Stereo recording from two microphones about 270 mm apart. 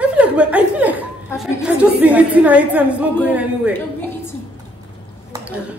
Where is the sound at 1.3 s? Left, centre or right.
Centre.